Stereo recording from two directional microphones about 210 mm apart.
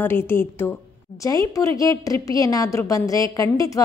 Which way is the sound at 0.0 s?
10° left (ahead or behind).